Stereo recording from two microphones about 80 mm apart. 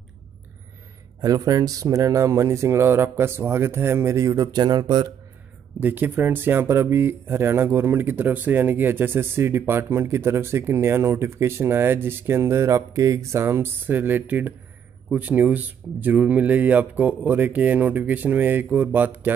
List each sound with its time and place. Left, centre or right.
1.2 s speech: right
4.6 s speech: right
5.8 s speech: right